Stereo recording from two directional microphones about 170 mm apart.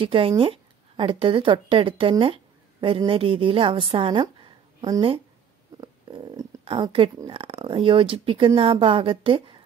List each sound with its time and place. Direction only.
0.0 s a woman's voice: 30° right (ahead or behind)